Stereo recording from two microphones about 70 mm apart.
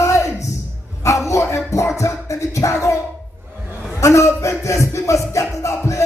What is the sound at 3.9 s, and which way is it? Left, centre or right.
Music, left.